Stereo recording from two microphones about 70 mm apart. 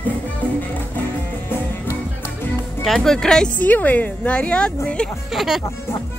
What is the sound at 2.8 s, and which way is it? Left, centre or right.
Speech, centre.